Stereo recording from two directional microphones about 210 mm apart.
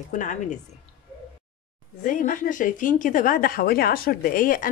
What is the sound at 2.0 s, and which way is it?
Speech, 40° left (ahead or behind).